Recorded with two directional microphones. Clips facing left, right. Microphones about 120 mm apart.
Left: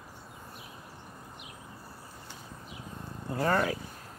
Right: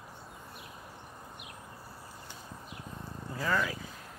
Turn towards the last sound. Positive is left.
turn(degrees=40)  # may be behind; listen again after turning